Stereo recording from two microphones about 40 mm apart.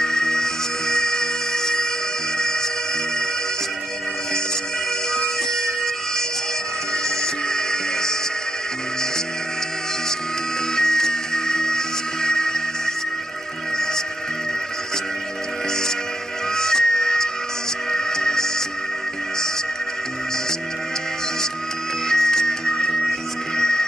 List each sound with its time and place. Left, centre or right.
0.0 s music: centre
5.1 s music: centre
7.4 s music: centre
10.8 s music: centre
16.5 s music: centre
22.1 s music: centre